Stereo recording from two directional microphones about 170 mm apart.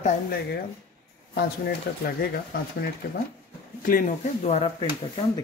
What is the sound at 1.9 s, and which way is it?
Speech, 65° left (ahead or behind).